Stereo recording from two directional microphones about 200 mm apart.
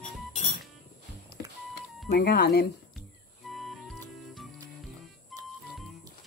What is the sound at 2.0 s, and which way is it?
Speech, 50° left (ahead or behind).